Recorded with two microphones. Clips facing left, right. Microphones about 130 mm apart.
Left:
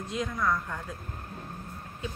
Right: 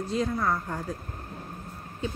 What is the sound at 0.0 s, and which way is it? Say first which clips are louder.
Speech: right 3 dB; 35° right (ahead or behind).